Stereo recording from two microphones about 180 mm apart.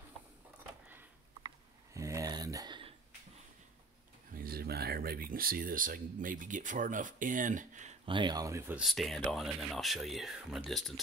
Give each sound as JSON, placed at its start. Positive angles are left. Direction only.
{"t": 0.8, "sound": "a sound", "side_deg": -10}
{"t": 4.4, "sound": "speech", "side_deg": -55}
{"t": 8.0, "sound": "speech", "side_deg": -25}
{"t": 8.8, "sound": "speech", "side_deg": 0}